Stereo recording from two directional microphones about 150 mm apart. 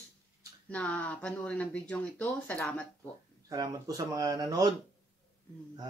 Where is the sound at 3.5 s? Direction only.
25° right (ahead or behind).